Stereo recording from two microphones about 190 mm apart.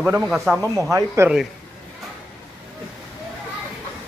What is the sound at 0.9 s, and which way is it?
Speech, 15° right (ahead or behind).